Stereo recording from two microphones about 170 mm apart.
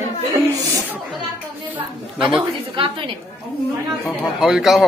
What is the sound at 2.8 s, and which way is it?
Speech, 30° right (ahead or behind).